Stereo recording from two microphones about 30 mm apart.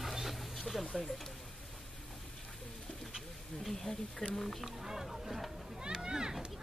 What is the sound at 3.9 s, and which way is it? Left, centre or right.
Speech, left.